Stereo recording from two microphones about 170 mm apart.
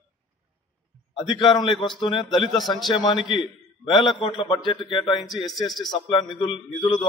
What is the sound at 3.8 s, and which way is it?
A man's voice, 30° left (ahead or behind).